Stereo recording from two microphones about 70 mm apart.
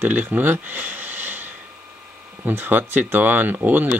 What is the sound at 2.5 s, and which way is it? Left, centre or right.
Speech, right.